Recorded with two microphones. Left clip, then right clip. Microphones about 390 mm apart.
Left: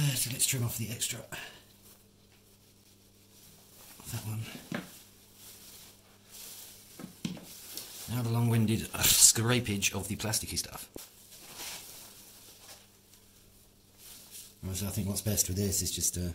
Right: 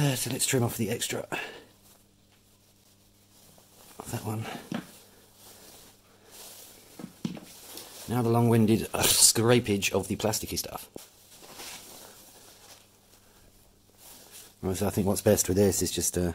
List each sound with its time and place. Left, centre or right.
0.0 s speech: centre
7.8 s a sound: centre
8.1 s speech: centre
14.3 s speech: centre